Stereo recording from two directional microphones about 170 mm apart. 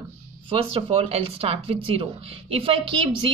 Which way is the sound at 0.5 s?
30° right (ahead or behind).